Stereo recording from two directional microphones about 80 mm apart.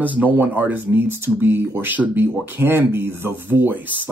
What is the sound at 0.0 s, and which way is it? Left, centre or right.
Speech, right.